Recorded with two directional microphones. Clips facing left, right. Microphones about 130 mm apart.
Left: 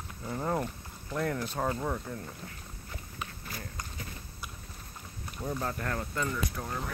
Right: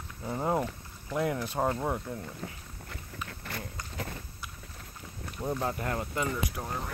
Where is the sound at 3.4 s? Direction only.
75° right (ahead or behind).